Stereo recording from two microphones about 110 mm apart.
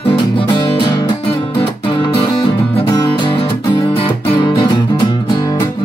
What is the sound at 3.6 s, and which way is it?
Music, 35° left (ahead or behind).